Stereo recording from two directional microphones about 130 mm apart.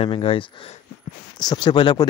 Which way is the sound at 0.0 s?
45° left (ahead or behind).